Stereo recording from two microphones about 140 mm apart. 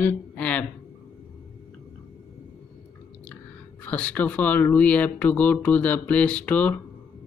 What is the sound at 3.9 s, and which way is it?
Speech, 10° left (ahead or behind).